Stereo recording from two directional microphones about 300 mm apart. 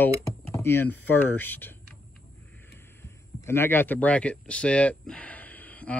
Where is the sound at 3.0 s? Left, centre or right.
Centre.